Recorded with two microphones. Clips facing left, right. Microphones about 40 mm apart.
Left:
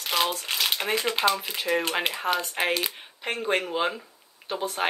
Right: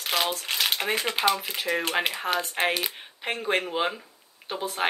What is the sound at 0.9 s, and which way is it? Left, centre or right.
Speech, centre.